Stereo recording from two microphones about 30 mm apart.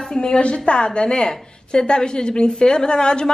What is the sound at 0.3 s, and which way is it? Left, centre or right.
A woman's voice, left.